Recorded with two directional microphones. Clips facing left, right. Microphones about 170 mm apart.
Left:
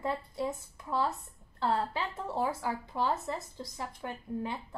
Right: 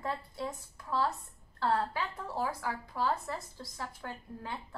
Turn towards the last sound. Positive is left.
turn(degrees=20)  # may be behind; listen again after turning